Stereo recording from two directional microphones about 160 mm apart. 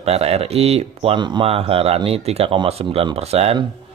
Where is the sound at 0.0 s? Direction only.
40° right (ahead or behind).